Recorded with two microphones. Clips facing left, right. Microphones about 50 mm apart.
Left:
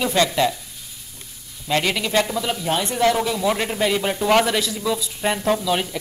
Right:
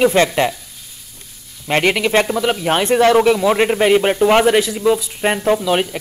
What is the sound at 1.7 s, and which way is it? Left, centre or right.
Speech, right.